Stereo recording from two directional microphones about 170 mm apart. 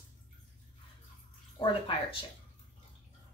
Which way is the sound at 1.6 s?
30° left (ahead or behind).